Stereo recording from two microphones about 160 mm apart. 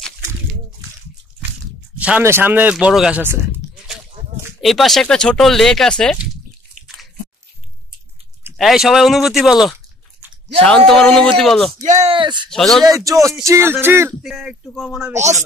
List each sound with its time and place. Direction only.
2.0 s speech: 10° right (ahead or behind)
4.6 s speech: centre (ahead or behind)
8.5 s speech: centre (ahead or behind)
11.8 s speech: 50° right (ahead or behind)
12.1 s speech: 30° right (ahead or behind)
12.4 s speech: centre (ahead or behind)
12.8 s speech: 20° right (ahead or behind)
14.2 s speech: centre (ahead or behind)